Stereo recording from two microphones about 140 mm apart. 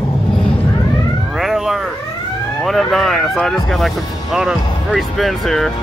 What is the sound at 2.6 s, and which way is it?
Speech, centre (ahead or behind).